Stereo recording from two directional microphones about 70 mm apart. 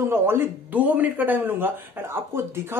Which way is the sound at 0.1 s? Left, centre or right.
Right.